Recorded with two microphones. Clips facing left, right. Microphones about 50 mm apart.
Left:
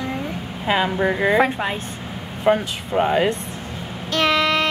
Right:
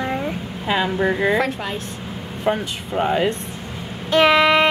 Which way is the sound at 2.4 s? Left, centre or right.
Centre.